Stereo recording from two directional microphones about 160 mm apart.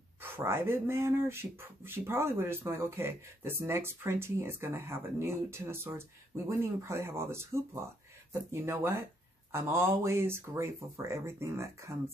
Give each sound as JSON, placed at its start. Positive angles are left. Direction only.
{"t": 0.2, "sound": "speech", "side_deg": -15}